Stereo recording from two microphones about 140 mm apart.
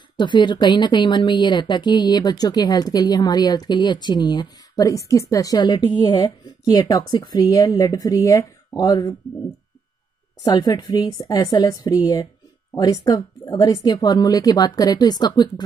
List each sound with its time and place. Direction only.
0.2 s speech: 35° left (ahead or behind)
10.4 s speech: 30° left (ahead or behind)